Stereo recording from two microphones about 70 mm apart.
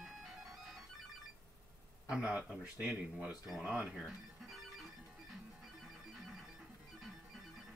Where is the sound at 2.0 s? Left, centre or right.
Centre.